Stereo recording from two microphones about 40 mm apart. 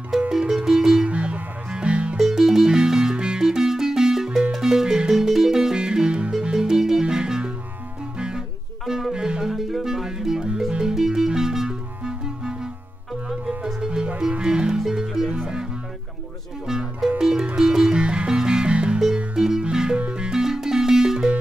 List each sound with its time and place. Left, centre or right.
0.3 s music: centre
1.0 s music: right
2.1 s music: centre
5.8 s music: right
9.5 s music: centre
13.7 s music: centre
17.2 s music: centre
19.3 s music: centre
20.0 s music: right
20.2 s music: centre